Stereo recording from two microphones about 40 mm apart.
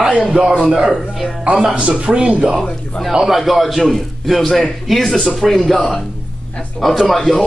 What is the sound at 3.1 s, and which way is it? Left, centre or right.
Speech, centre.